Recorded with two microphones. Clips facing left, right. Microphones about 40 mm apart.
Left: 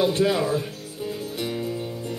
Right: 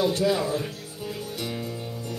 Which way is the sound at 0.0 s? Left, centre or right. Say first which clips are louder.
Left 2 dB; left.